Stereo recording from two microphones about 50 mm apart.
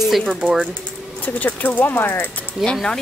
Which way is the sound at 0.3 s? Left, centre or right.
Right.